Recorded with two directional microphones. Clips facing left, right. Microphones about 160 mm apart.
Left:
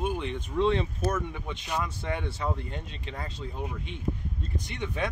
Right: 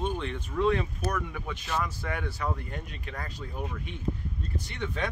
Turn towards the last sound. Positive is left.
turn(degrees=15)  # may be behind; listen again after turning